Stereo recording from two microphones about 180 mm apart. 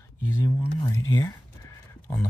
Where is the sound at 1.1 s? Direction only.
15° left (ahead or behind).